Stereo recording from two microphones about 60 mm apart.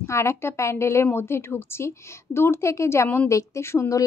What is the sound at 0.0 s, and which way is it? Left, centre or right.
A woman's voice, left.